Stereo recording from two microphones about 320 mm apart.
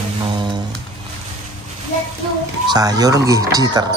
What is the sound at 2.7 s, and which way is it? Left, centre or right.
Speech, centre.